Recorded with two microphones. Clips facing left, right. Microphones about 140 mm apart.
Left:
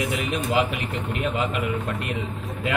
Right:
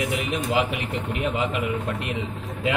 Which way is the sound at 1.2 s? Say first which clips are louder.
Even; 20° right (ahead or behind).